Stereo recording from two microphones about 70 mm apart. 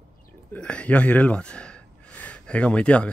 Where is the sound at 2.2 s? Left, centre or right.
Centre.